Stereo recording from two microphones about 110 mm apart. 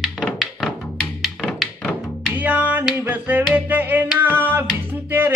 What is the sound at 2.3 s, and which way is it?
Music, 15° right (ahead or behind).